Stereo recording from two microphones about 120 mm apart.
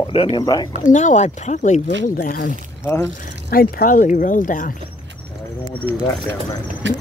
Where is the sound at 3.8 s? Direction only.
90° left.